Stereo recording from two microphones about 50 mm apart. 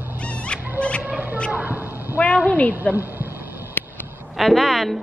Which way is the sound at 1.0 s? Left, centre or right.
Right.